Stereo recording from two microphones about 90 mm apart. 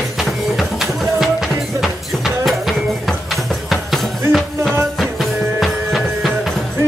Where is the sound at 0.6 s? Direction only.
Centre (ahead or behind).